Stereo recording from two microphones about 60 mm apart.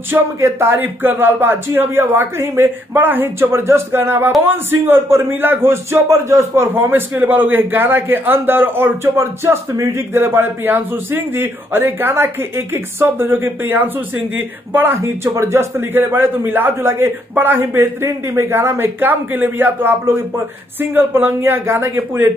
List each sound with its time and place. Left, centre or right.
0.1 s a man's voice: right
6.7 s a man's voice: right
15.2 s a man's voice: right